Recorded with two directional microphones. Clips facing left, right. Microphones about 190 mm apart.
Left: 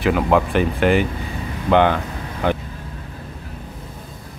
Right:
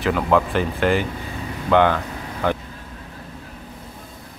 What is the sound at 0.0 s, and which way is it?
Speech, 15° left (ahead or behind).